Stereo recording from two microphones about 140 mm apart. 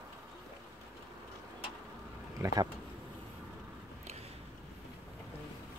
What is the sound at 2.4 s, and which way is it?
Speech, 30° right (ahead or behind).